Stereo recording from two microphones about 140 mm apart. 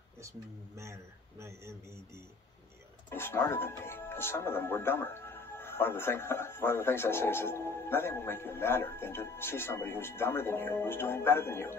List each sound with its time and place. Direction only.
1.4 s a man's voice: 20° right (ahead or behind)
3.1 s speech: 15° left (ahead or behind)